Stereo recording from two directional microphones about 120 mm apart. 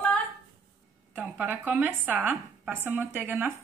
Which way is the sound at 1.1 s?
15° right (ahead or behind).